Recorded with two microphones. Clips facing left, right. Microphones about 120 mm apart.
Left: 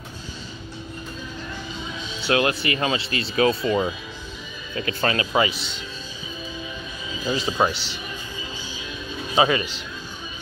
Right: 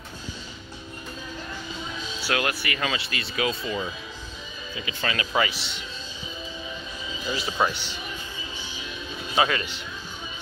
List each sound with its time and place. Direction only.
2.1 s speech: 25° left (ahead or behind); by 5.1 s 50° left (ahead or behind)
5.1 s speech: 25° left (ahead or behind)
7.2 s speech: 20° left (ahead or behind)
7.7 s speech: 90° left
9.3 s speech: 20° left (ahead or behind)